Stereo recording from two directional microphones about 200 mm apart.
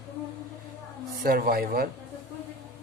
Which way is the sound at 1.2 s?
45° right (ahead or behind).